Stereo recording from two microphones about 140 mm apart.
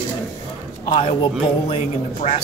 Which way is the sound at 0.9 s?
40° left (ahead or behind).